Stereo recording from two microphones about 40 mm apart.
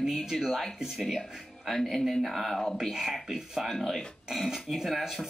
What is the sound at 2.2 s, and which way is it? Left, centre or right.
Speech, centre.